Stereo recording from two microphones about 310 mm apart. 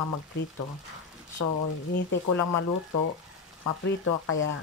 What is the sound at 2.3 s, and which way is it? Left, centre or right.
Speech, left.